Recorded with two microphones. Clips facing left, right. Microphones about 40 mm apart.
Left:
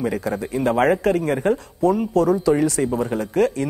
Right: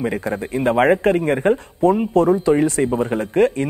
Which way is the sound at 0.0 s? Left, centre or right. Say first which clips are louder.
Right 1 dB; right.